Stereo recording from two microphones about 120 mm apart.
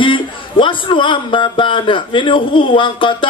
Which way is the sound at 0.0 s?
45° left (ahead or behind).